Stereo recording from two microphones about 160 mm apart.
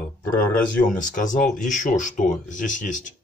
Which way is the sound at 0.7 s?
55° left (ahead or behind).